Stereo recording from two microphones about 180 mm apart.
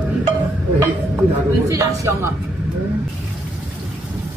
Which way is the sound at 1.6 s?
15° right (ahead or behind).